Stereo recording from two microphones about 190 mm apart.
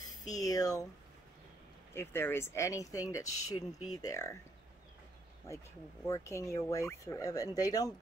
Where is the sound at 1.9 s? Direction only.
10° left (ahead or behind).